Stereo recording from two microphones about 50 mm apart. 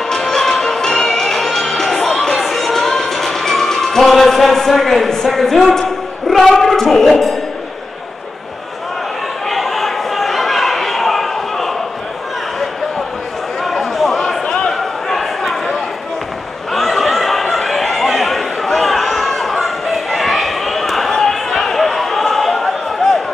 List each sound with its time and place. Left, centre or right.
0.1 s music: centre
1.7 s crowd: centre
2.3 s music: centre
9.5 s a sound: centre
13.7 s a sound: centre
16.7 s chatter: centre